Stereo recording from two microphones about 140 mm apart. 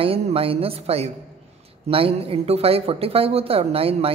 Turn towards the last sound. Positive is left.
turn(degrees=-45)  # may be behind; listen again after turning